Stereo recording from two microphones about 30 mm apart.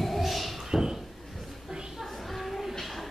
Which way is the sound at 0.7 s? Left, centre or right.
Right.